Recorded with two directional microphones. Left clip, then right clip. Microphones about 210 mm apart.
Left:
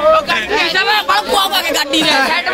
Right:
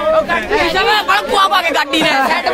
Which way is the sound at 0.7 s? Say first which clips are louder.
Right 1 dB; 15° right (ahead or behind).